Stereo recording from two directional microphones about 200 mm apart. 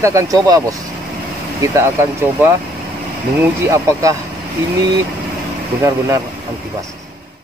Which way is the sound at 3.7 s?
15° right (ahead or behind).